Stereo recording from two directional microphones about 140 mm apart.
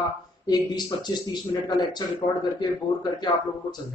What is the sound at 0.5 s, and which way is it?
Speech, 30° left (ahead or behind).